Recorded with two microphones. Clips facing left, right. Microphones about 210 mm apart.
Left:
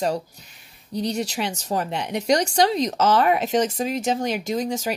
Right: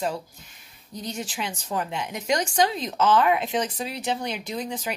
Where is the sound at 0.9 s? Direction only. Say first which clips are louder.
Left 8 dB; 70° left (ahead or behind).